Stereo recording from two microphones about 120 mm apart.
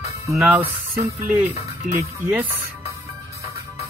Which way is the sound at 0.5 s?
15° right (ahead or behind).